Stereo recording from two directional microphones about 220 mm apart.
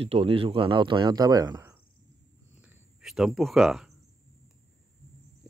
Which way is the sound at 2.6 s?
Centre (ahead or behind).